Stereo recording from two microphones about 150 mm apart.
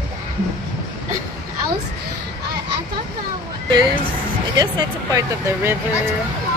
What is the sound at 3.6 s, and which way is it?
Speech, 30° right (ahead or behind).